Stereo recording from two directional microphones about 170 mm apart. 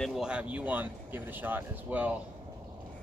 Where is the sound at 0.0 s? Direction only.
5° right (ahead or behind).